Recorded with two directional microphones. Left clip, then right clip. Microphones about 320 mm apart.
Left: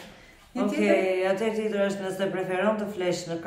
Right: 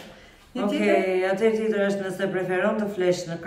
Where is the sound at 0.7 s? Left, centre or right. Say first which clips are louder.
Right 2 dB; centre.